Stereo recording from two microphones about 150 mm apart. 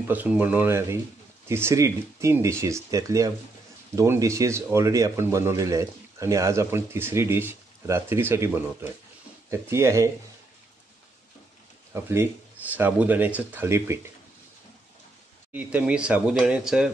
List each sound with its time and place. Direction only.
0.1 s speech: 10° right (ahead or behind)
11.9 s speech: 15° right (ahead or behind)
15.5 s speech: 10° right (ahead or behind)